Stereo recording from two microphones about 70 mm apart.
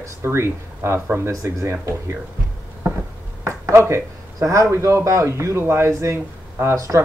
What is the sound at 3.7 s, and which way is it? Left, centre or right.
Speech, right.